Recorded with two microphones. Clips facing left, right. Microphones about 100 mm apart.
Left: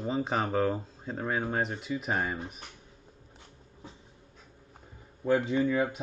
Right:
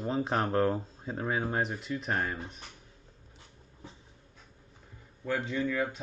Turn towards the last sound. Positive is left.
turn(degrees=20)  # may be behind; listen again after turning